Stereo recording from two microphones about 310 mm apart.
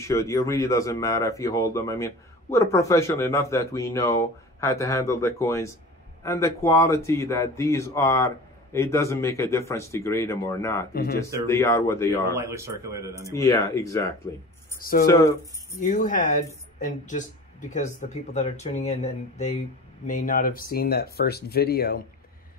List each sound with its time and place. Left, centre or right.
0.0 s speech: centre
10.9 s speech: left
11.4 s speech: centre
12.4 s speech: centre
13.3 s speech: centre
14.8 s speech: left
15.0 s speech: centre
15.8 s speech: left